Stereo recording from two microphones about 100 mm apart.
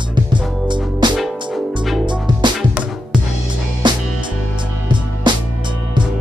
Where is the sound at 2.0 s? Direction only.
50° right (ahead or behind).